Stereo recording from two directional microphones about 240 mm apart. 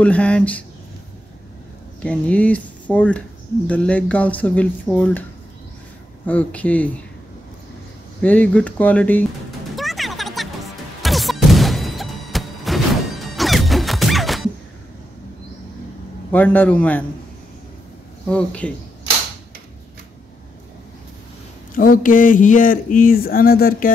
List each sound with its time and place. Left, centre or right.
0.0 s speech: centre
2.0 s speech: centre
6.2 s speech: centre
8.2 s speech: centre
9.8 s music: centre
16.3 s speech: centre
18.3 s speech: centre
21.7 s speech: left